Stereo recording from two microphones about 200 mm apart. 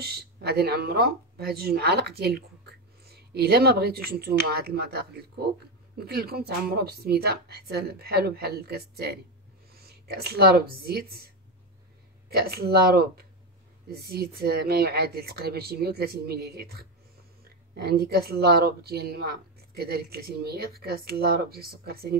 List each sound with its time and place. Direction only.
0.0 s speech: 50° right (ahead or behind)
12.3 s speech: 50° right (ahead or behind)